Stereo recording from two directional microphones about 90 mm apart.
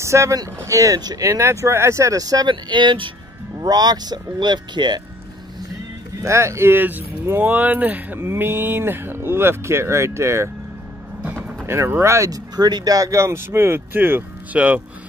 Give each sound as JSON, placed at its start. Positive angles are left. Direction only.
{"t": 0.0, "sound": "speech", "side_deg": -35}
{"t": 3.5, "sound": "speech", "side_deg": -45}
{"t": 6.2, "sound": "speech", "side_deg": -30}
{"t": 11.2, "sound": "vehicle", "side_deg": -15}
{"t": 11.6, "sound": "speech", "side_deg": -30}
{"t": 12.5, "sound": "speech", "side_deg": -50}